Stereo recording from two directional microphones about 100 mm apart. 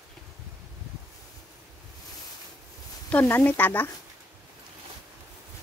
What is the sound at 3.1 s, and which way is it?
Speech, 20° left (ahead or behind).